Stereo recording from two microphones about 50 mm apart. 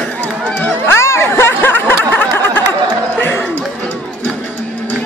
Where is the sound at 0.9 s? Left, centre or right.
Left.